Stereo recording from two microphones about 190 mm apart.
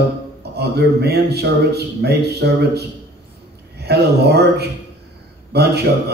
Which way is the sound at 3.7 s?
60° right (ahead or behind).